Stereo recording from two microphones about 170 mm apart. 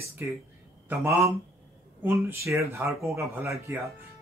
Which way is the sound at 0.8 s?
15° right (ahead or behind).